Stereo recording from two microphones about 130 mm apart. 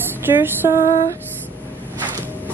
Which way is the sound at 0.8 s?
75° left (ahead or behind).